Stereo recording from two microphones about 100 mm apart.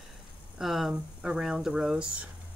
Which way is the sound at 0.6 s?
Centre (ahead or behind).